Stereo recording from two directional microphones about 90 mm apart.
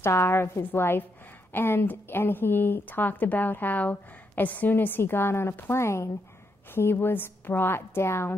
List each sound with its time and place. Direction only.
0.0 s speech: 30° left (ahead or behind)